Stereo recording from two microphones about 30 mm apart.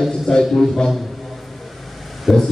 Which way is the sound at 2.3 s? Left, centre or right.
Centre.